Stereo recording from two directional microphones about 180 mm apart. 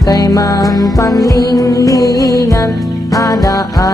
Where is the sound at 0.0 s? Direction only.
20° left (ahead or behind).